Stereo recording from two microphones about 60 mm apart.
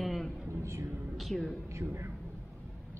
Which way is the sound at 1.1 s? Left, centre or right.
Centre.